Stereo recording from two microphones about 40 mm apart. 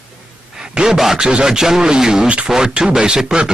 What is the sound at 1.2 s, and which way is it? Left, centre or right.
Speech, right.